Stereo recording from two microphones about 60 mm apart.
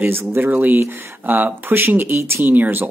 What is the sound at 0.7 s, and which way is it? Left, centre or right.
Speech, right.